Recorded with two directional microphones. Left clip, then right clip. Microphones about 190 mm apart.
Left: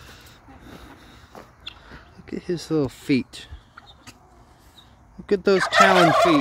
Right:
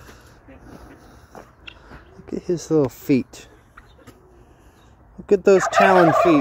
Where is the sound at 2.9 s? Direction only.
Centre (ahead or behind).